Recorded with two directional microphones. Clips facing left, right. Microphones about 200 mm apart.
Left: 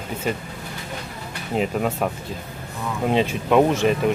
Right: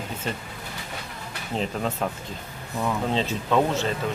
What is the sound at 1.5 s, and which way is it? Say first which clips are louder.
Speech: left 5 dB; 10° left (ahead or behind).